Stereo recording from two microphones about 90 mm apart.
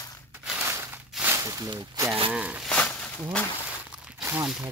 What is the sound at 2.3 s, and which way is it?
Speech, 10° right (ahead or behind).